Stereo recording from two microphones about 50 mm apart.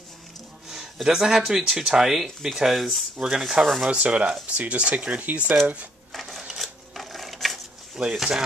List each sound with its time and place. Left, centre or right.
1.0 s speech: centre
4.0 s speech: right
6.3 s sewing machine: centre
8.0 s speech: centre